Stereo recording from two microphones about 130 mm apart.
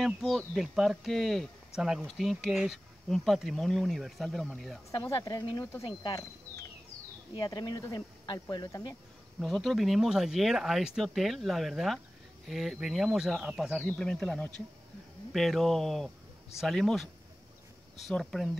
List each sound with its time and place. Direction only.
0.0 s speech: centre (ahead or behind)
4.9 s speech: 25° left (ahead or behind)
7.3 s speech: 30° left (ahead or behind)
9.4 s speech: centre (ahead or behind)